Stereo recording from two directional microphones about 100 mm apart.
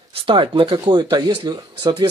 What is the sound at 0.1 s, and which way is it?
Speech, 60° right (ahead or behind).